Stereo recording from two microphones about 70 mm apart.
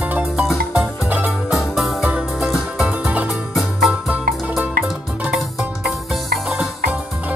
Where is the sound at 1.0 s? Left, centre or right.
Right.